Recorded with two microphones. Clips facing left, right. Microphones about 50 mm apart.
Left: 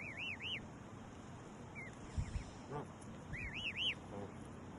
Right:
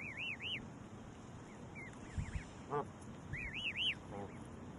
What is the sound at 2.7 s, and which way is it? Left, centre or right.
Duck, right.